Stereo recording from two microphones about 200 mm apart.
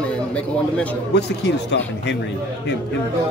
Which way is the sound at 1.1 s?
60° left (ahead or behind).